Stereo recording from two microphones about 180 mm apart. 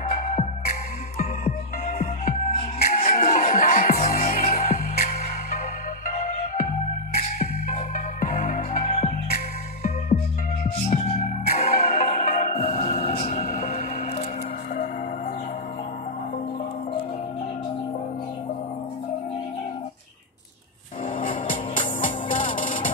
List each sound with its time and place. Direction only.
0.0 s music: 50° left (ahead or behind)
8.8 s music: 40° left (ahead or behind)
11.6 s music: 55° left (ahead or behind)
21.5 s music: 45° left (ahead or behind)